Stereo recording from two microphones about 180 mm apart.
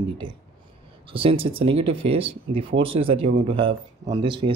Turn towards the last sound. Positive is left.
turn(degrees=-25)  # may be behind; listen again after turning